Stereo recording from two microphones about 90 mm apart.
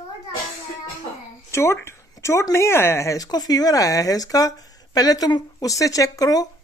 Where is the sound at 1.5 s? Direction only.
30° left (ahead or behind).